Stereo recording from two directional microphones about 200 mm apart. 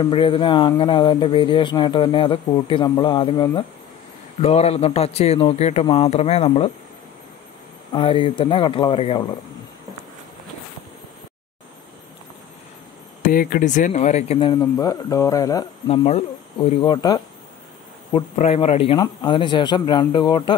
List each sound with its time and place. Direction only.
0.0 s a man's voice: 25° left (ahead or behind)
7.9 s speech: 25° left (ahead or behind)
13.3 s a man's voice: 45° left (ahead or behind)
14.5 s speech: 20° left (ahead or behind)
15.9 s speech: 30° left (ahead or behind)
18.1 s speech: 30° left (ahead or behind)